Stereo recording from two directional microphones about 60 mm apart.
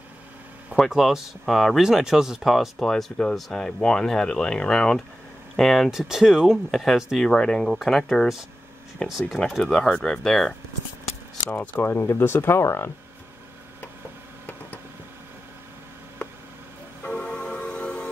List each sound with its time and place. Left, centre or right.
0.7 s speech: centre
1.8 s speech: centre
2.9 s speech: centre
5.9 s speech: centre
7.2 s speech: centre
11.8 s speech: left
17.1 s music: centre